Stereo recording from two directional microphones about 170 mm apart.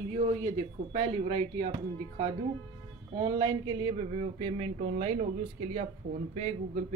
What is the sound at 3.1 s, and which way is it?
Speech, 30° right (ahead or behind).